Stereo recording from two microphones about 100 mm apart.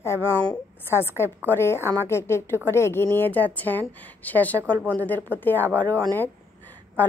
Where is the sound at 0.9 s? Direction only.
25° left (ahead or behind).